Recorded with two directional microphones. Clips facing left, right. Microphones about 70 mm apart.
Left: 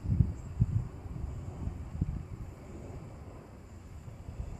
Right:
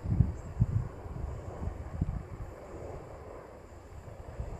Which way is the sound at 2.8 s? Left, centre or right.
Right.